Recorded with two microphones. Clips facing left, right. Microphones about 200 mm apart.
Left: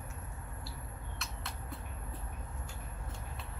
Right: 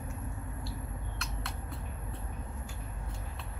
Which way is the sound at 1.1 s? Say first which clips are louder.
Right 1 dB; centre (ahead or behind).